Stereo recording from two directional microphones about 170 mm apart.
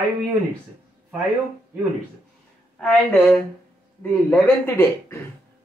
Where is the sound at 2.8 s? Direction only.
5° left (ahead or behind).